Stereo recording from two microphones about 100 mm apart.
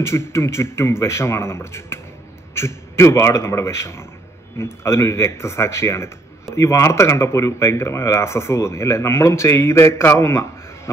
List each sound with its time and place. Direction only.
0.0 s speech: 25° left (ahead or behind)